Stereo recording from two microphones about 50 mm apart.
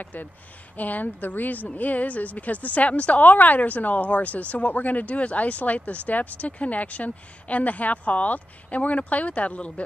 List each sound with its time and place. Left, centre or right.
0.0 s a woman's voice: left